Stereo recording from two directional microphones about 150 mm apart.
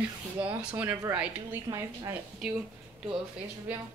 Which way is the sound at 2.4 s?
Centre (ahead or behind).